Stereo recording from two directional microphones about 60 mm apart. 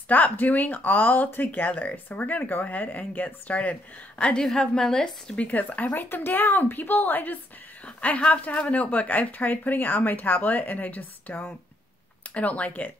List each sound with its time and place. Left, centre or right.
0.1 s speech: left
4.2 s a woman's voice: centre
5.4 s a woman's voice: left